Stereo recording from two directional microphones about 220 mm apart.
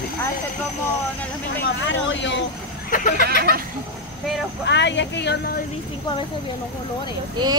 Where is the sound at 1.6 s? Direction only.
55° left (ahead or behind).